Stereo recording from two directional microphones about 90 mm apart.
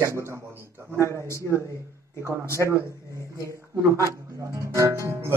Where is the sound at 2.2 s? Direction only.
35° right (ahead or behind).